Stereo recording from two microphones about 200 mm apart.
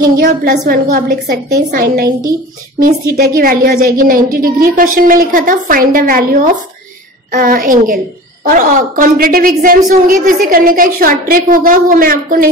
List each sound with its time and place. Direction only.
0.2 s a woman's voice: 45° right (ahead or behind)